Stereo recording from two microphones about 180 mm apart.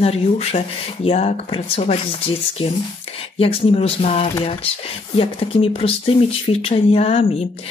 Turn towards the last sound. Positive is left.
turn(degrees=35)  # may be behind; listen again after turning